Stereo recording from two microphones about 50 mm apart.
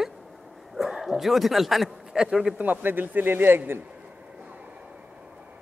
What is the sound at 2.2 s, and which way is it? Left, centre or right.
Speech, centre.